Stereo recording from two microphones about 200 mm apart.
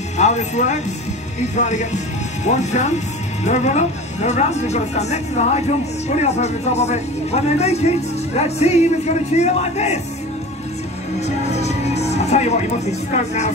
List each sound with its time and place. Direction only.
0.2 s speech: 35° left (ahead or behind)
11.1 s music: 35° left (ahead or behind)